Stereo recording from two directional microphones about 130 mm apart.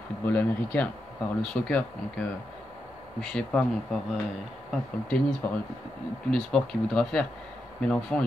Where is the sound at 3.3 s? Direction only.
5° left (ahead or behind).